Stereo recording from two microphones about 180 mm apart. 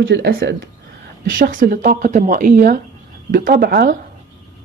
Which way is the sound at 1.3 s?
50° right (ahead or behind).